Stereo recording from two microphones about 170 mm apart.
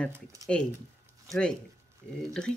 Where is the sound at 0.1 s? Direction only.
20° right (ahead or behind).